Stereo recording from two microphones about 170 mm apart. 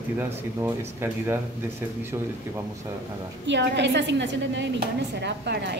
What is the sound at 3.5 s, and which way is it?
A woman's voice, 90° right.